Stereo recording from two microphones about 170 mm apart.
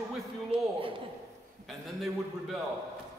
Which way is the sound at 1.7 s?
Centre (ahead or behind).